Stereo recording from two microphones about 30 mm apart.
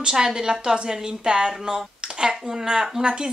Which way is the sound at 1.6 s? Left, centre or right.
Centre.